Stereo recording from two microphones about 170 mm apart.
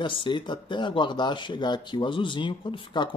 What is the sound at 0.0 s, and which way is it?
Speech, 30° left (ahead or behind).